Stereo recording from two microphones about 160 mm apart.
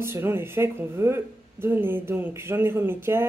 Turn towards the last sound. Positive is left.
turn(degrees=-15)  # may be behind; listen again after turning